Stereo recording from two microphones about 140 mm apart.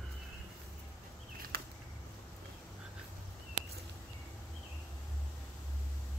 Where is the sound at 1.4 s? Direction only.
90° right.